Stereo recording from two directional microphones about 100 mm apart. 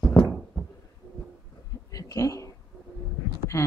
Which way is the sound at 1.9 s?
35° left (ahead or behind).